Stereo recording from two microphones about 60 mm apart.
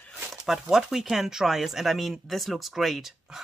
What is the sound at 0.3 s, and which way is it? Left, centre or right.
Speech, centre.